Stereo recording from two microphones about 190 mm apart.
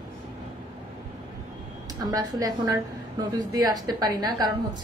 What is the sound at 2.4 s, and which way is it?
A woman's voice, 20° right (ahead or behind).